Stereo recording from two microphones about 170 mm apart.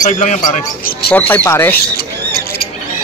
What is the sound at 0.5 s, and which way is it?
Speech, 60° left (ahead or behind).